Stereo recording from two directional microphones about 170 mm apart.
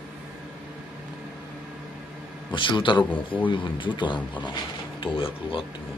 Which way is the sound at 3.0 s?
10° left (ahead or behind).